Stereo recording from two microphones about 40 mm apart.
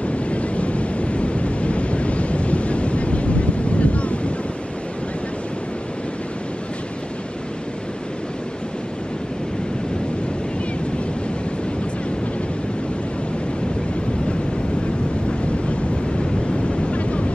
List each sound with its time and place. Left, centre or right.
0.0 s waves: left
16.8 s vehicle: left